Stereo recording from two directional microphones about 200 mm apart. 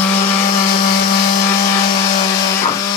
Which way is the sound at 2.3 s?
20° left (ahead or behind).